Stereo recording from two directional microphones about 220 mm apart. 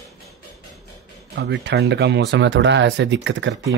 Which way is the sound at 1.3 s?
50° right (ahead or behind).